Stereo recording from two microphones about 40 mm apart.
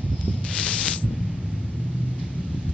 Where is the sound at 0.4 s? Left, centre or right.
Left.